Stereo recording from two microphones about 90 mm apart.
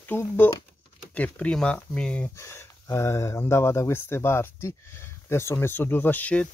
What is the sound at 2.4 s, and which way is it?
Speech, 30° left (ahead or behind).